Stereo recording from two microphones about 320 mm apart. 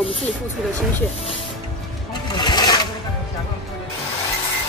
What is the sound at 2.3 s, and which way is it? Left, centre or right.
Sewing machine, centre.